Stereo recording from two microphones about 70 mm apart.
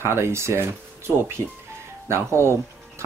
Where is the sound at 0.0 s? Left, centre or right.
Right.